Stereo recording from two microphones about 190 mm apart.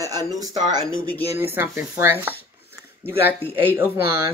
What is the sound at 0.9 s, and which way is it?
Speech, 5° left (ahead or behind).